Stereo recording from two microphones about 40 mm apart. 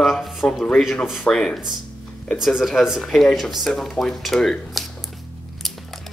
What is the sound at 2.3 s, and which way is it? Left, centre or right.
Speech, centre.